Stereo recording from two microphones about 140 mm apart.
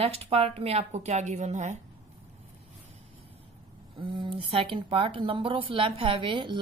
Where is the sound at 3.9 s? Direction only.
40° right (ahead or behind).